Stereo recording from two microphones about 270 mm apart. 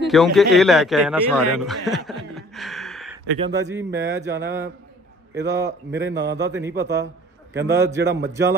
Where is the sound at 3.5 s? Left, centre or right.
Centre.